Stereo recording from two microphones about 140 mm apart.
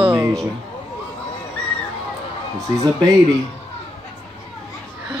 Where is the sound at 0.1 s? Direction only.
20° right (ahead or behind).